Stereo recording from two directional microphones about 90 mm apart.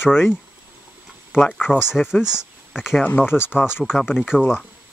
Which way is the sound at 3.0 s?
20° left (ahead or behind).